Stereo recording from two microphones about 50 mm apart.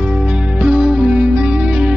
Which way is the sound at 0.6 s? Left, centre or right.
Centre.